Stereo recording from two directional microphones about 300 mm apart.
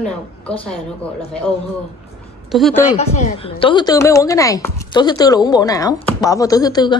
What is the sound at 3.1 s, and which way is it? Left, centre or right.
A woman's voice, left.